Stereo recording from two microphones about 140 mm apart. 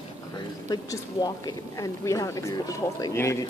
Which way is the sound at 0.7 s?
30° left (ahead or behind).